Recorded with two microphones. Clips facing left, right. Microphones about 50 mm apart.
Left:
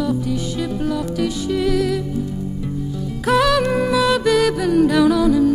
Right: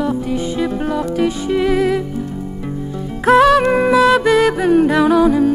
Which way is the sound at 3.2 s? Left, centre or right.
Right.